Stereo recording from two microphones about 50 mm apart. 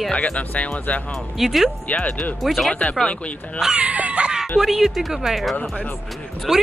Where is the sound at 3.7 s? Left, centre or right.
Right.